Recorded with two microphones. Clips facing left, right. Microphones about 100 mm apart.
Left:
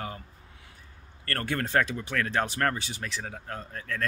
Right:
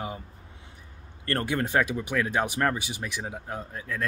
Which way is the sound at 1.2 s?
20° right (ahead or behind).